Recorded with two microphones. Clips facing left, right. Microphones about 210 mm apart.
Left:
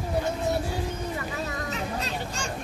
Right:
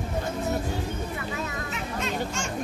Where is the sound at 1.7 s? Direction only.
35° left (ahead or behind).